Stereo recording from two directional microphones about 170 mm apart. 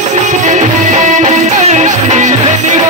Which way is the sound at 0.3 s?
45° right (ahead or behind).